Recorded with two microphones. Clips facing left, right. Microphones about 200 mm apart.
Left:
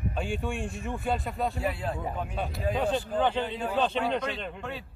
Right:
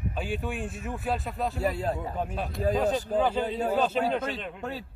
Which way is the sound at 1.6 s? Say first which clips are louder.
Right 3 dB; 40° right (ahead or behind).